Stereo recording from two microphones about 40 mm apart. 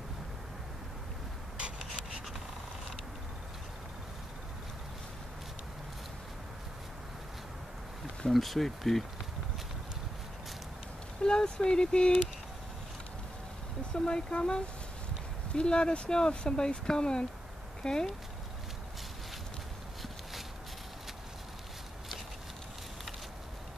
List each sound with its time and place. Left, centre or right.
8.3 s speech: centre
11.2 s speech: left
13.9 s speech: left